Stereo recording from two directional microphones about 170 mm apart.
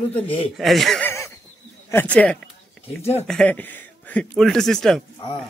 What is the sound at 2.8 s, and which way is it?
Speech, 35° left (ahead or behind).